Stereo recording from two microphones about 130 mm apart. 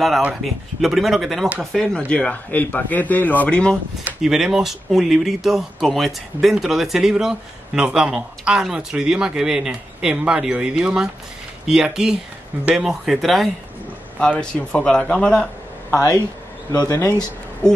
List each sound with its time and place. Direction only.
0.2 s speech: centre (ahead or behind)
4.0 s speech: 5° right (ahead or behind)
15.9 s speech: 25° left (ahead or behind)